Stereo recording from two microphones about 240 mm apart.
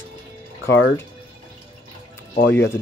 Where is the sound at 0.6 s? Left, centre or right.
Left.